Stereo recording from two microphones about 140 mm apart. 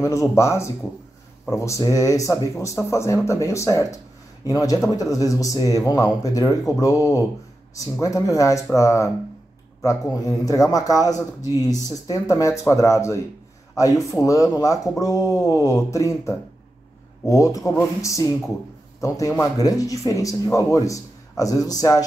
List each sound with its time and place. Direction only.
0.0 s speech: 20° left (ahead or behind)